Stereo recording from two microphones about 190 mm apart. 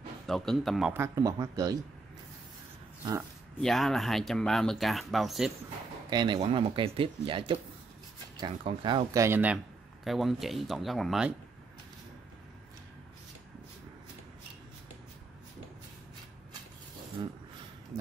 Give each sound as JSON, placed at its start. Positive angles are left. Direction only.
{"t": 0.3, "sound": "speech", "side_deg": 0}
{"t": 3.6, "sound": "speech", "side_deg": 0}
{"t": 6.0, "sound": "speech", "side_deg": -25}